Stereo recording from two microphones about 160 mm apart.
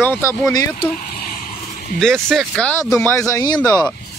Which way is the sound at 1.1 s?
70° left (ahead or behind).